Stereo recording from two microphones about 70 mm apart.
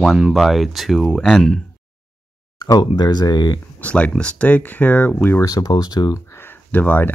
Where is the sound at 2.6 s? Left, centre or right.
Left.